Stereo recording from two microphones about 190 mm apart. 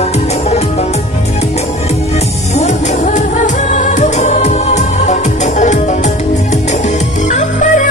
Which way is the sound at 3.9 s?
40° left (ahead or behind).